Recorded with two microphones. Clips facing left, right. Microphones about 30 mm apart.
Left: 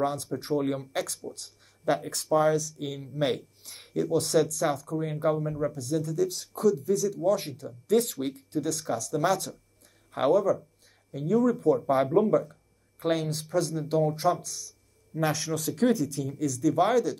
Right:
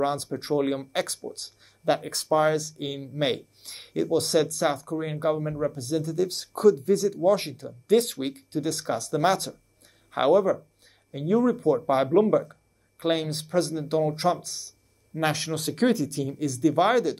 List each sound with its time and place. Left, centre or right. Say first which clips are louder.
0.0 s speech: right 2 dB; right
1.3 s a sound: right 4 dB; right
2.3 s speech: right 1 dB; right
5.8 s speech: right 1 dB; right